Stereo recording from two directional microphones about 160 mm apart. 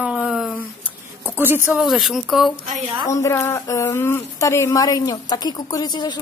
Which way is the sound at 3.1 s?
20° left (ahead or behind).